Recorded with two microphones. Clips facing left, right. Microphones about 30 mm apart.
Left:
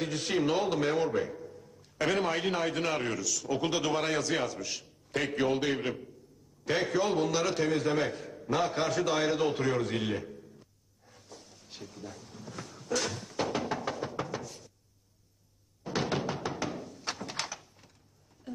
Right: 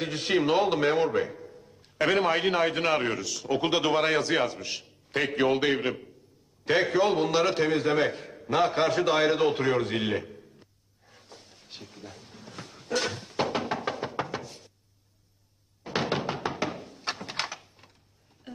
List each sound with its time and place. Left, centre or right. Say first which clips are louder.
0.0 s a man's voice: right 4 dB; right
6.6 s a sound: right 5 dB; right
15.8 s thunk: right 3 dB; right